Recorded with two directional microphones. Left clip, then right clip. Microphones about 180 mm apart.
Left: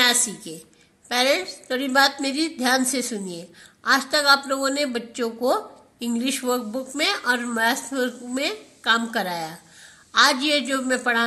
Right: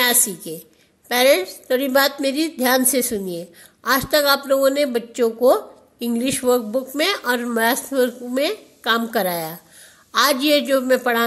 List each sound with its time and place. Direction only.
0.0 s a woman's voice: 45° right (ahead or behind)